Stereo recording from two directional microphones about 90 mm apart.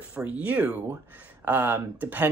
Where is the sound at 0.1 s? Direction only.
15° right (ahead or behind).